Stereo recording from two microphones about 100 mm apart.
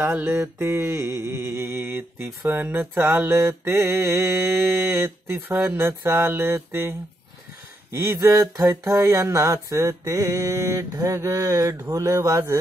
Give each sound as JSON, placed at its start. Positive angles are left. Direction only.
{"t": 0.0, "sound": "music", "side_deg": -25}
{"t": 7.9, "sound": "mantra", "side_deg": -25}
{"t": 11.8, "sound": "music", "side_deg": -35}